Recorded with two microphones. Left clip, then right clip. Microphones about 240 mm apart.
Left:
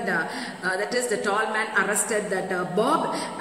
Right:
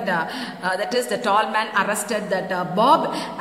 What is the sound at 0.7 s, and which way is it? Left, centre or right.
A man's voice, right.